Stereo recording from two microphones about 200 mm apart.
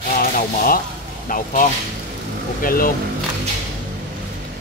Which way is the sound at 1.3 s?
40° left (ahead or behind).